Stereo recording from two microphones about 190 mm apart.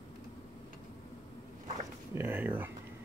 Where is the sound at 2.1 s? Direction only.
10° right (ahead or behind).